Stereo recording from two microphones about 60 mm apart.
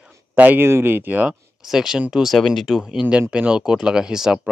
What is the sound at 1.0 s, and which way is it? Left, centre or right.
Speech, right.